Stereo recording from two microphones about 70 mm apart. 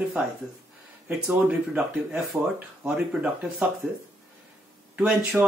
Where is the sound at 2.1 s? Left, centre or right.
Centre.